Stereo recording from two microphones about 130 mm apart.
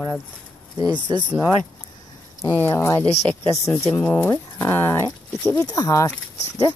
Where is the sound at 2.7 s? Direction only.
25° left (ahead or behind).